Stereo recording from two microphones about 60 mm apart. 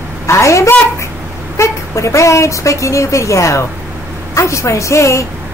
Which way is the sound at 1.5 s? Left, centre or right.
Left.